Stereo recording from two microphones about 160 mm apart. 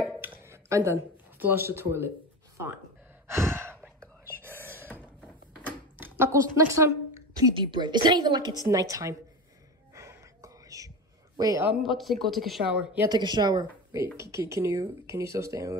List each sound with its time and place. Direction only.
0.2 s a sound: 15° right (ahead or behind)
2.5 s speech: 15° right (ahead or behind)
3.3 s sigh: 15° right (ahead or behind)
4.4 s wail: 15° right (ahead or behind)
5.9 s a woman's voice: 15° right (ahead or behind)
7.5 s speech: 30° right (ahead or behind)
9.9 s music: 20° right (ahead or behind)
11.3 s a man's voice: 20° right (ahead or behind)
11.8 s speech: centre (ahead or behind)
13.1 s speech: 25° right (ahead or behind)